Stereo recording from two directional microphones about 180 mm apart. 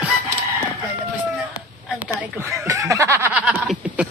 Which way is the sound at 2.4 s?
15° right (ahead or behind).